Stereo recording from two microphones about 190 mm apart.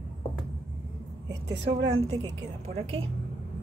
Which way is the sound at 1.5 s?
70° right (ahead or behind).